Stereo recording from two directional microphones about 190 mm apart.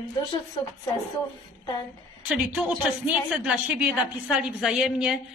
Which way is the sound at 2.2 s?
5° right (ahead or behind).